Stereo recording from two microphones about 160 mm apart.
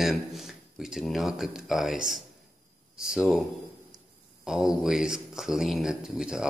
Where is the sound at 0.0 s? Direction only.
Centre (ahead or behind).